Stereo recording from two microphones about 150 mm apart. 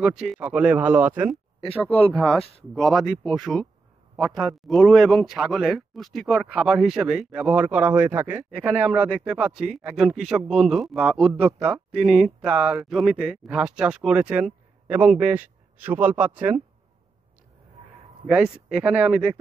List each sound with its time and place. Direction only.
0.0 s speech: 5° right (ahead or behind)
1.9 s speech: 40° left (ahead or behind)
2.1 s speech: centre (ahead or behind)
11.5 s speech: 30° right (ahead or behind)
12.0 s speech: 5° right (ahead or behind)
18.2 s speech: 5° right (ahead or behind)